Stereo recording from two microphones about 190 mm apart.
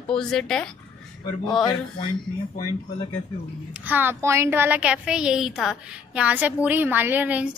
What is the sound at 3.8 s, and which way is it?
A woman's voice, 10° right (ahead or behind).